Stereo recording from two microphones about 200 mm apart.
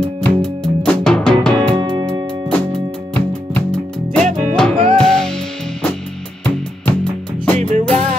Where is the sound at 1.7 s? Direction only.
20° right (ahead or behind).